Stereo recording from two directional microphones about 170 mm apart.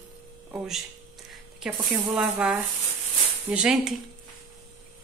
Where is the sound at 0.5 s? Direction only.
Centre (ahead or behind).